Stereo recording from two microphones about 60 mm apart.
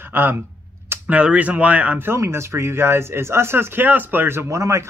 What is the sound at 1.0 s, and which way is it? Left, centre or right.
Speech, right.